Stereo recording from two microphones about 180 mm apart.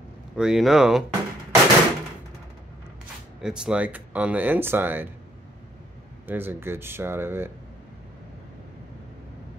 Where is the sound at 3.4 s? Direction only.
5° right (ahead or behind).